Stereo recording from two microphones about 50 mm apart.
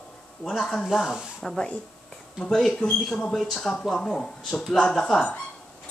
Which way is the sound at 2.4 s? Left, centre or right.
Centre.